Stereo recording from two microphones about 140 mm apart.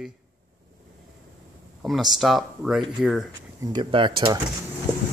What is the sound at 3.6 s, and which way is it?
Speech, 35° right (ahead or behind).